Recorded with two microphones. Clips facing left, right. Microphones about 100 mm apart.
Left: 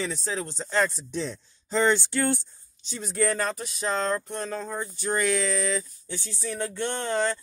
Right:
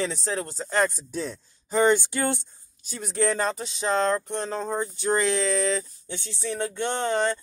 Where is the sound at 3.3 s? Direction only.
25° right (ahead or behind).